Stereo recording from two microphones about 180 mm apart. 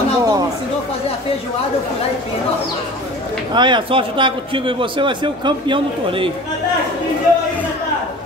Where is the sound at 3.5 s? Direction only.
25° right (ahead or behind).